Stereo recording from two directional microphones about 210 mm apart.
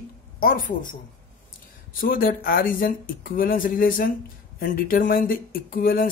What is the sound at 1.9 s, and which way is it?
Speech, 40° left (ahead or behind).